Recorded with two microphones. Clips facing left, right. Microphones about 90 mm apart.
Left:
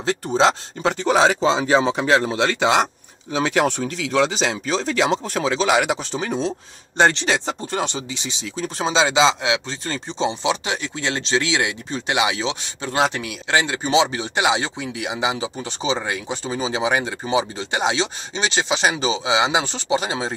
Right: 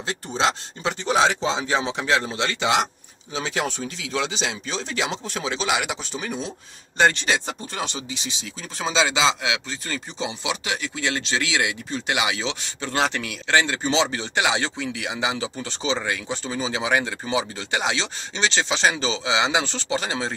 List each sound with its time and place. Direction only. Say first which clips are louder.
0.3 s speech: left 5 dB; 45° left (ahead or behind)
3.3 s speech: left 7 dB; 60° left (ahead or behind)
4.3 s speech: left 6 dB; 45° left (ahead or behind); by 7.5 s 25° left (ahead or behind)
8.5 s speech: left 8 dB; 50° left (ahead or behind)
8.8 s speech: left 4 dB; 25° left (ahead or behind)